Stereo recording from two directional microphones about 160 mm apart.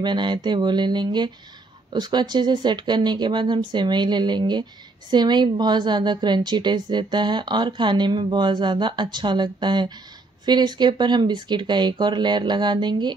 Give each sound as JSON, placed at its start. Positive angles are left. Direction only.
{"t": 0.0, "sound": "a woman's voice", "side_deg": -30}